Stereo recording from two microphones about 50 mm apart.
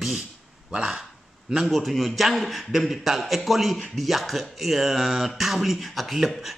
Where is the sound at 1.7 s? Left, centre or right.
Centre.